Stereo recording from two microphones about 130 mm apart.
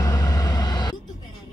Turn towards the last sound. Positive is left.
turn(degrees=30)  # may be behind; listen again after turning